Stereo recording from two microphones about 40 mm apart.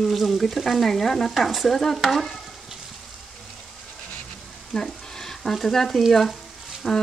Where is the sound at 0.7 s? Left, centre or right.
Centre.